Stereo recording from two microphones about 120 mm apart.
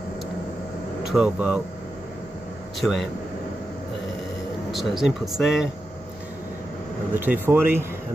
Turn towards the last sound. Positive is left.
turn(degrees=-20)  # may be behind; listen again after turning